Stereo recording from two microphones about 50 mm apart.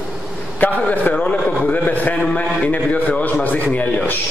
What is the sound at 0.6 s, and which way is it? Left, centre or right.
A man's voice, left.